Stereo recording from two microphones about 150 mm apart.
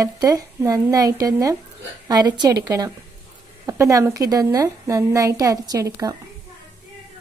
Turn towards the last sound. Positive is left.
turn(degrees=-25)  # may be behind; listen again after turning